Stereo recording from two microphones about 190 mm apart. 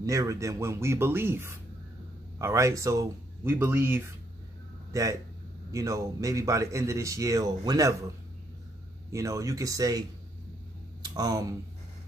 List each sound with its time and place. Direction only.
0.0 s speech: 15° right (ahead or behind)
9.1 s speech: 15° right (ahead or behind)